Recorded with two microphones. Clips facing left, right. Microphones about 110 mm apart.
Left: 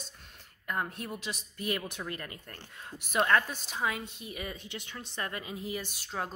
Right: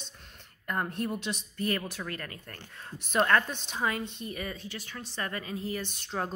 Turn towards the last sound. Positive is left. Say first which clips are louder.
# right 3 dB
turn(degrees=5)  # may be behind; listen again after turning